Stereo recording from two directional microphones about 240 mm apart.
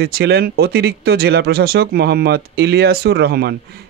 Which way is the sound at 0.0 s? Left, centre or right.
Right.